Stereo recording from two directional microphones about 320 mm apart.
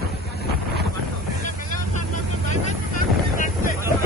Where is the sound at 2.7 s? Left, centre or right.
Left.